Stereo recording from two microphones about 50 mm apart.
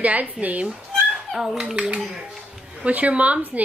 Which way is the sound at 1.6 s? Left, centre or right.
Right.